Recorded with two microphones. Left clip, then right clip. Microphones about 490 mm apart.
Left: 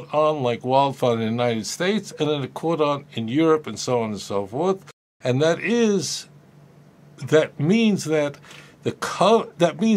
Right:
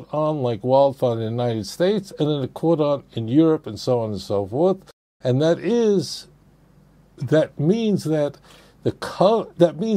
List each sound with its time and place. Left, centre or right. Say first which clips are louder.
0.0 s speech: left 2 dB; right
8.8 s speech: right 1 dB; right